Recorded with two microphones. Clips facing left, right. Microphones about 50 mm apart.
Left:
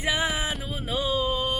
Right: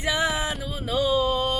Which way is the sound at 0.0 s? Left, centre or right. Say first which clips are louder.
Right 2 dB; centre.